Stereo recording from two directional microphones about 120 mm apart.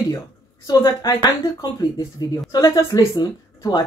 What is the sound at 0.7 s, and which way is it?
Speech, 30° left (ahead or behind).